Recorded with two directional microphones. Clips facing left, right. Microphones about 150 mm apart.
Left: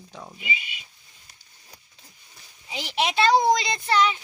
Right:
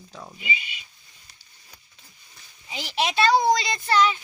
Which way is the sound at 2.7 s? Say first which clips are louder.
Even; 15° left (ahead or behind).